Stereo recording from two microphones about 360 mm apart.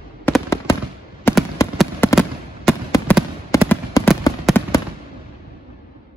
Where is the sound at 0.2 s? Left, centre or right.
Centre.